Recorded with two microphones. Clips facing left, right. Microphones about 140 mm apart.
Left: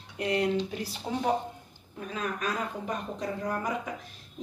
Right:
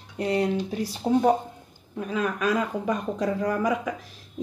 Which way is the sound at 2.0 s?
65° right (ahead or behind).